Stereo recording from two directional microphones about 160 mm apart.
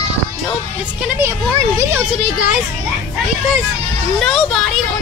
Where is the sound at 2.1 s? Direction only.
5° right (ahead or behind).